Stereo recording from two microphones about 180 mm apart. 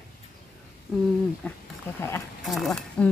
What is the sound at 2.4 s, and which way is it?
Speech, centre (ahead or behind).